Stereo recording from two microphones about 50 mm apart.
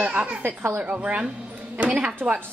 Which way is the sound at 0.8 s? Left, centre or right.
Right.